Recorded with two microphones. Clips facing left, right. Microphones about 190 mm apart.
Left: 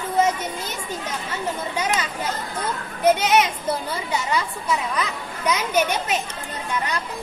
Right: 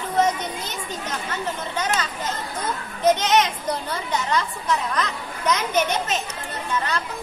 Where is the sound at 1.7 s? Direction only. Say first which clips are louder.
Left 1 dB; 10° left (ahead or behind).